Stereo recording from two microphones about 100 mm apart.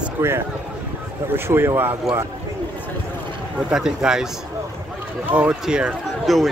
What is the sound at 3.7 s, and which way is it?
Speech, 5° right (ahead or behind).